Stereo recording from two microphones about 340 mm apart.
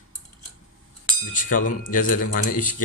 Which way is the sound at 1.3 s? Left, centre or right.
Left.